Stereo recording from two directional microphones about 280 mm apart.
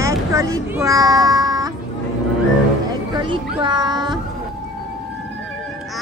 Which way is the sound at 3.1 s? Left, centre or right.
Centre.